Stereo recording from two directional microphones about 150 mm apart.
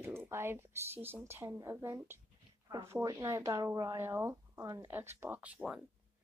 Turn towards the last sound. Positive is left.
turn(degrees=-5)  # may be behind; listen again after turning